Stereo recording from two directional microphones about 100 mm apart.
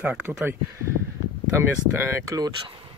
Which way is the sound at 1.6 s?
25° right (ahead or behind).